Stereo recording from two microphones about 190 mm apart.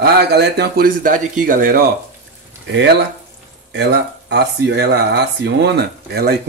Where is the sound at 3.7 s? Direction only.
65° right (ahead or behind).